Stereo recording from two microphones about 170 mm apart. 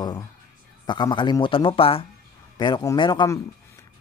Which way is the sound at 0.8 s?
25° left (ahead or behind).